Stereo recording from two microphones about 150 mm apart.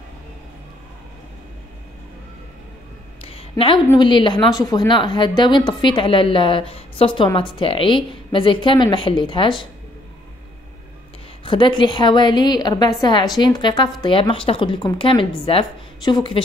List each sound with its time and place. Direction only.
3.2 s a sound: 40° left (ahead or behind)
4.0 s speech: 30° left (ahead or behind)
11.4 s speech: 35° left (ahead or behind)